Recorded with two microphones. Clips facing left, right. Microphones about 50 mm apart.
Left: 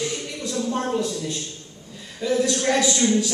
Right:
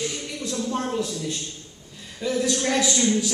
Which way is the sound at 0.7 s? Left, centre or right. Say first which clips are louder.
Left 3 dB; centre.